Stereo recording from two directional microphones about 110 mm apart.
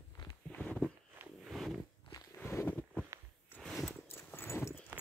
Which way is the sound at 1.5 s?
Centre (ahead or behind).